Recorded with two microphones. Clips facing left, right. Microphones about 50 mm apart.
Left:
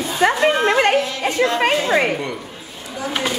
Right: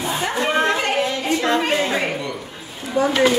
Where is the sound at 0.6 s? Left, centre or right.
Left.